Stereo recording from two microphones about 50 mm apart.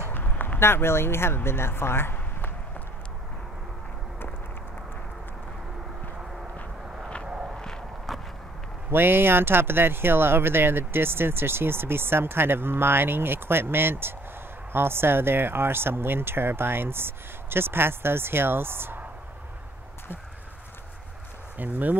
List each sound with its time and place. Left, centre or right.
0.1 s speech: left
7.2 s walk: centre
7.5 s walk: centre
8.1 s a sound: centre
8.9 s speech: right
21.5 s speech: right